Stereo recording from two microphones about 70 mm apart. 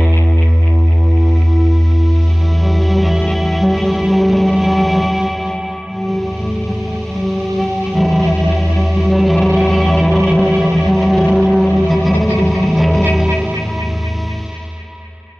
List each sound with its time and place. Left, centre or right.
1.5 s music: centre
7.5 s music: centre